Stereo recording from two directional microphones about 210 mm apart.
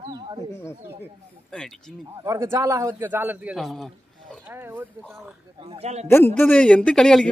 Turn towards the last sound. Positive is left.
turn(degrees=5)  # may be behind; listen again after turning